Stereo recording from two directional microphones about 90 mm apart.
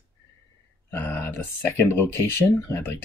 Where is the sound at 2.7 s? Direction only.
25° left (ahead or behind).